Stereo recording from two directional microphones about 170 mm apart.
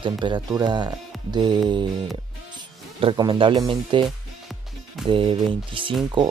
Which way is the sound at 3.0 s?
30° right (ahead or behind).